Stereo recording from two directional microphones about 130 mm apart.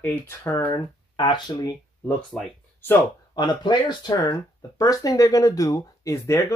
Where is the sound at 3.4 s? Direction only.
35° left (ahead or behind).